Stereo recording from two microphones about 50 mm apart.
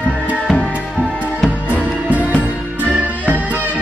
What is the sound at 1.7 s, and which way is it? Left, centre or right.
Music, right.